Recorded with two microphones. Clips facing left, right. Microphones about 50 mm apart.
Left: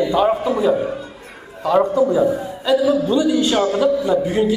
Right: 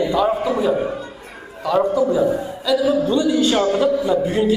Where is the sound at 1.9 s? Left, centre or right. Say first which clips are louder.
Left 1 dB; left.